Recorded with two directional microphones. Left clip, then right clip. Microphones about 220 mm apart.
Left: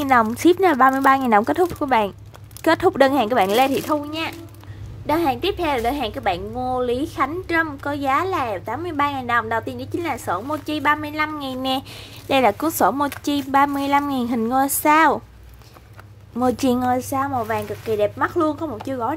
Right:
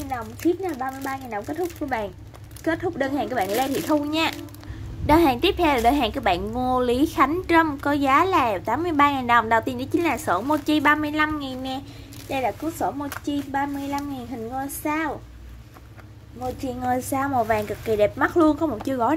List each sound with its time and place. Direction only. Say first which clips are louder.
0.1 s a woman's voice: left 10 dB; 35° left (ahead or behind); by 11.8 s 15° left (ahead or behind)
12.3 s speech: left 8 dB; 35° left (ahead or behind)
16.8 s a woman's voice: left 3 dB; 10° left (ahead or behind)